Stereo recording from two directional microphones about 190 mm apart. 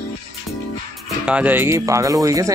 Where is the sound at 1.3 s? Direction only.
5° right (ahead or behind).